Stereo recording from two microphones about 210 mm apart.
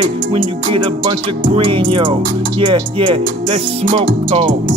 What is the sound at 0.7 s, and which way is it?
Speech, 25° right (ahead or behind).